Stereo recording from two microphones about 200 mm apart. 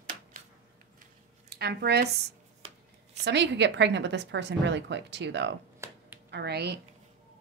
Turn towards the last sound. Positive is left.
turn(degrees=-55)  # may be behind; listen again after turning